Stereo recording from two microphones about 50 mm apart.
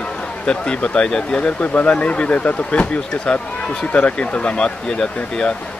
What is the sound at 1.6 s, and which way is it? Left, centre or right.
Speech, left.